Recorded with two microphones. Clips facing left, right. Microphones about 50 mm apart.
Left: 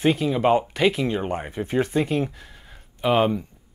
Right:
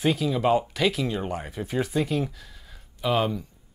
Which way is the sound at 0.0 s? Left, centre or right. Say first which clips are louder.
Left 3 dB; left.